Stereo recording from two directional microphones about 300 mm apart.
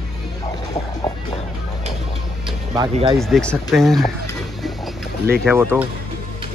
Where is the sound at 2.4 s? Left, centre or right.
Centre.